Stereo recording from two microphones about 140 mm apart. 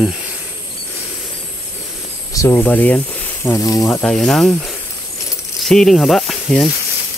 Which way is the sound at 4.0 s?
5° left (ahead or behind).